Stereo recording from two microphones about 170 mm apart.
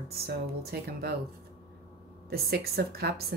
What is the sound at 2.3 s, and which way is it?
Speech, 65° right (ahead or behind).